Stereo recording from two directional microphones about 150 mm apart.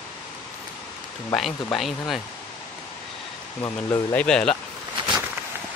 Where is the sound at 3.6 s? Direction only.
25° left (ahead or behind).